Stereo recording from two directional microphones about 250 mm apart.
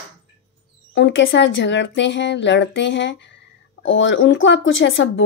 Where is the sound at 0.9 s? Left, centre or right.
Left.